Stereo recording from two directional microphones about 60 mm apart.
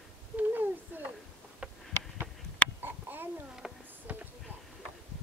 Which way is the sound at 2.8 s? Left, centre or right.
Right.